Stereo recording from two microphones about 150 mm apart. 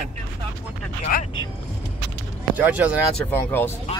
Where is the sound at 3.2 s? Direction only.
15° left (ahead or behind).